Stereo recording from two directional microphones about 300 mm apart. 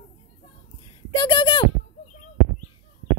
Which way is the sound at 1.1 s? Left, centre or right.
Centre.